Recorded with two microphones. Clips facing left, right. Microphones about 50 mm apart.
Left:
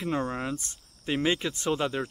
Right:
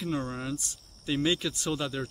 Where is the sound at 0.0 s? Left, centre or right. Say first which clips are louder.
Left 3 dB; left.